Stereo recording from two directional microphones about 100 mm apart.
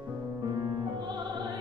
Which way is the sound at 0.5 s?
45° right (ahead or behind).